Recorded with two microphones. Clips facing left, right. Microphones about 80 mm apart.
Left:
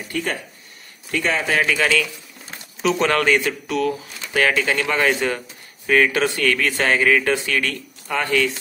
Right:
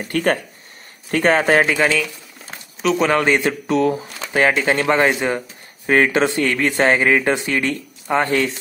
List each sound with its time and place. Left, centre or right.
0.1 s a man's voice: right
1.7 s speech: right
2.8 s speech: centre
3.3 s speech: right